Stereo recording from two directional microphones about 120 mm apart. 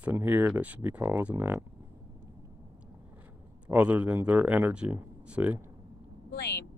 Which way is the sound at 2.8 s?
10° right (ahead or behind).